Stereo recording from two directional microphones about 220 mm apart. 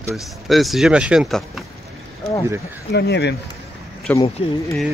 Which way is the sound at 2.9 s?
50° left (ahead or behind).